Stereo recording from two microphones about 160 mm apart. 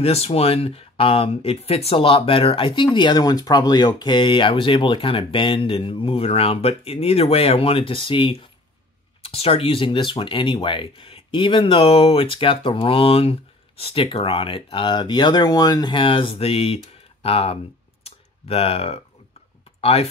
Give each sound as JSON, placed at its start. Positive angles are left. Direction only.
{"t": 0.0, "sound": "speech", "side_deg": 40}
{"t": 18.0, "sound": "a sound", "side_deg": 35}
{"t": 19.8, "sound": "speech", "side_deg": 40}